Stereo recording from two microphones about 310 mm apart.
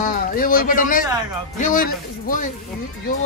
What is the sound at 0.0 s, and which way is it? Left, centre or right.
A man's voice, left.